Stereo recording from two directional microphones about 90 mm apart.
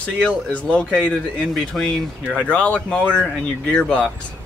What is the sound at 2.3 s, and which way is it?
Speech, 15° left (ahead or behind).